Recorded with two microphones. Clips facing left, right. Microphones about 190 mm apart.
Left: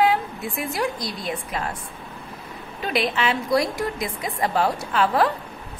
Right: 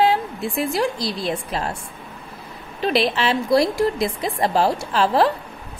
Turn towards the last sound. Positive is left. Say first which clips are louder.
# right 3 dB
turn(degrees=-30)  # may be behind; listen again after turning